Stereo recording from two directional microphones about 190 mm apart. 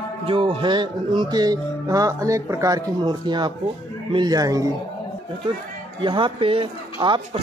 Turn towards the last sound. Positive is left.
turn(degrees=-25)  # may be behind; listen again after turning